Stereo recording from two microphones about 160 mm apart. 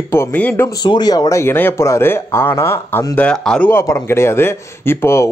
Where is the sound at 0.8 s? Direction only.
25° left (ahead or behind).